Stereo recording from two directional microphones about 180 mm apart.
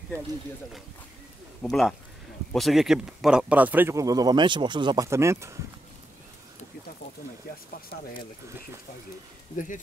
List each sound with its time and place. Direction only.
1.6 s speech: centre (ahead or behind); by 5.6 s 15° right (ahead or behind)